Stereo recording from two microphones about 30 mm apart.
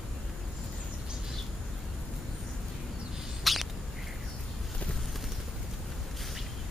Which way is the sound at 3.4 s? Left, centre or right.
Centre.